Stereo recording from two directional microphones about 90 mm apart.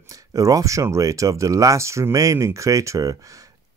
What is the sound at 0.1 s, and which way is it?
Speech, 40° right (ahead or behind).